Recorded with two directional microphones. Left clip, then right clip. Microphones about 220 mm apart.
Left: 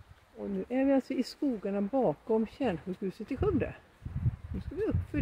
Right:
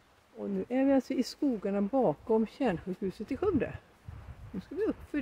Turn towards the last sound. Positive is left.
turn(degrees=-5)  # may be behind; listen again after turning